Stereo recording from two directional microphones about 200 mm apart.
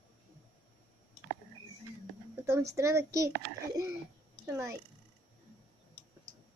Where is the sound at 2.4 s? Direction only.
15° right (ahead or behind).